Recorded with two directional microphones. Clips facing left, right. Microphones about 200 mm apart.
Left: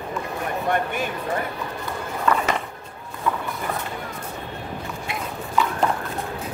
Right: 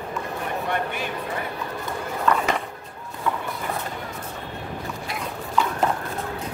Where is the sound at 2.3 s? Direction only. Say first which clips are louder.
Even; 5° left (ahead or behind).